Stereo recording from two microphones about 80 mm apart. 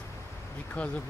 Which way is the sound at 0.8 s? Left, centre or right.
Centre.